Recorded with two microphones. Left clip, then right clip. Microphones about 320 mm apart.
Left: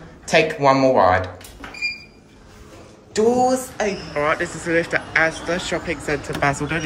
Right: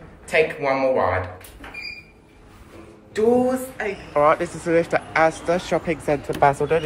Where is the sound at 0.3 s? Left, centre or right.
Centre.